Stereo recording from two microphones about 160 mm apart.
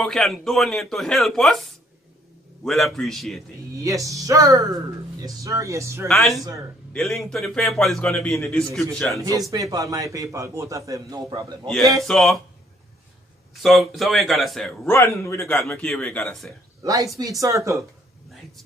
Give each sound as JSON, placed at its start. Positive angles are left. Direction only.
{"t": 0.0, "sound": "a man's voice", "side_deg": 0}
{"t": 2.6, "sound": "a man's voice", "side_deg": 0}
{"t": 3.7, "sound": "a man's voice", "side_deg": -20}
{"t": 6.0, "sound": "a man's voice", "side_deg": 0}
{"t": 9.5, "sound": "a man's voice", "side_deg": -20}
{"t": 12.1, "sound": "a man's voice", "side_deg": 0}
{"t": 13.6, "sound": "a man's voice", "side_deg": 0}
{"t": 14.9, "sound": "speech", "side_deg": 15}
{"t": 16.8, "sound": "a man's voice", "side_deg": -20}